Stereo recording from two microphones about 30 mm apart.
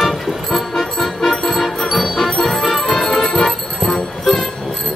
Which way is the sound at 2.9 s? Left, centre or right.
Centre.